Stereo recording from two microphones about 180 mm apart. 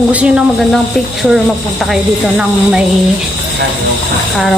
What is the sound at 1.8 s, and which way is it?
Speech, 5° right (ahead or behind).